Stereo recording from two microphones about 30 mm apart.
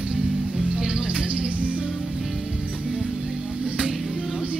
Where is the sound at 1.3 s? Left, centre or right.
Right.